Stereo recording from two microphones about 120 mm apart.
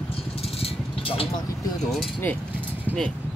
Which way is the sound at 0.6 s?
50° left (ahead or behind).